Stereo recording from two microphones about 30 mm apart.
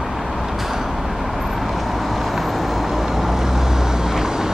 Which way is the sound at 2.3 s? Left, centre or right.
Centre.